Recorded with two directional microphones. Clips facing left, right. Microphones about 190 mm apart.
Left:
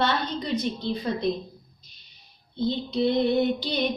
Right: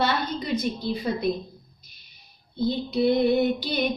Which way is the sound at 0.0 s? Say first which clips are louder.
Even; 5° right (ahead or behind).